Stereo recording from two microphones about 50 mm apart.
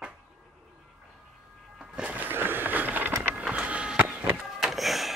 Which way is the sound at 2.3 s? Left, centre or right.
Right.